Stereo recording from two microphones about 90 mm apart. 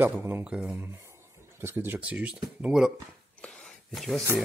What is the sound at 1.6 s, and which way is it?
Speech, 25° right (ahead or behind).